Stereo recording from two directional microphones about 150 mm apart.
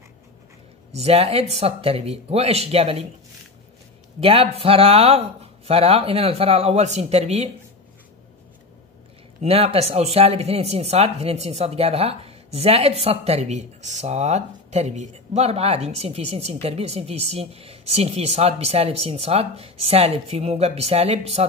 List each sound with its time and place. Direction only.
0.9 s speech: 45° right (ahead or behind)
4.2 s speech: 40° right (ahead or behind)
9.4 s speech: 40° right (ahead or behind)